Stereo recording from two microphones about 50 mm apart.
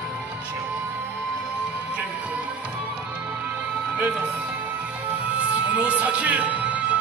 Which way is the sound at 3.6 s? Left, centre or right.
Right.